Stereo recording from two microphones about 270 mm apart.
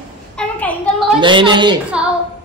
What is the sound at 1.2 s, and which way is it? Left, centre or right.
Speech, centre.